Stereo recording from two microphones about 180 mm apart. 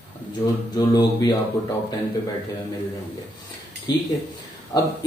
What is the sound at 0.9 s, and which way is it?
Speech, 20° left (ahead or behind).